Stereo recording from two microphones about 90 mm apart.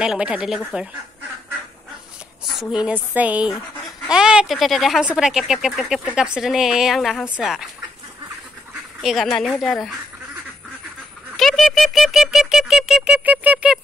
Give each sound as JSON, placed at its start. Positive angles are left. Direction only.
{"t": 0.0, "sound": "speech", "side_deg": -10}
{"t": 2.6, "sound": "a woman's voice", "side_deg": -10}
{"t": 9.0, "sound": "a woman's voice", "side_deg": 0}
{"t": 11.3, "sound": "squeak", "side_deg": 5}